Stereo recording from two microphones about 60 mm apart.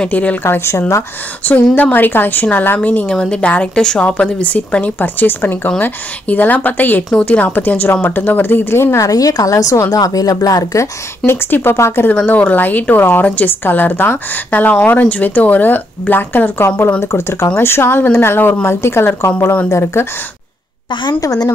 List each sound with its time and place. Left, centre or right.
0.0 s a woman's voice: left
0.4 s speech: left
1.4 s speech: left
3.2 s a woman's voice: centre; by 8.9 s left
8.9 s a woman's voice: left
9.9 s speech: left
11.2 s speech: left
12.3 s a woman's voice: left
17.1 s speech: left
17.6 s speech: left
21.2 s speech: left